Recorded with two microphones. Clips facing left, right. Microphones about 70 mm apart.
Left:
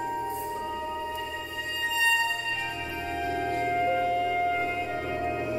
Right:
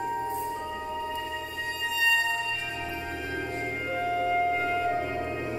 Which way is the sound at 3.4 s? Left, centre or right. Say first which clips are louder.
Left 6 dB; centre.